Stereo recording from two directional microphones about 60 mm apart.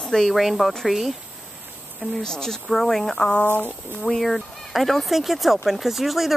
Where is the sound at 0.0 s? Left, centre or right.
Centre.